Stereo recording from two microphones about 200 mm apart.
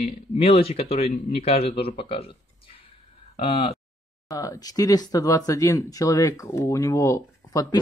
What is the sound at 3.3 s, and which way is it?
Speech, 25° left (ahead or behind).